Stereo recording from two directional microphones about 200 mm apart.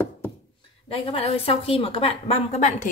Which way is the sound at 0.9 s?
25° left (ahead or behind).